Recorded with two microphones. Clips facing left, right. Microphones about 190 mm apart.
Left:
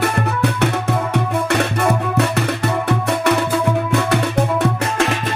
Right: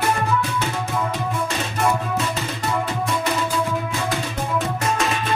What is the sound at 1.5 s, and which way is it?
Music, 65° left (ahead or behind).